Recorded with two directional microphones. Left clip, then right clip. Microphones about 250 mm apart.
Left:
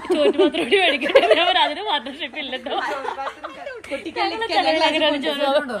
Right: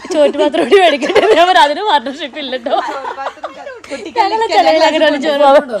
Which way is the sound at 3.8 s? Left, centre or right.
Right.